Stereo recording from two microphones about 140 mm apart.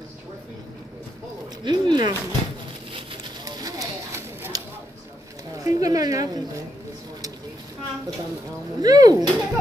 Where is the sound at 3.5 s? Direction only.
25° right (ahead or behind).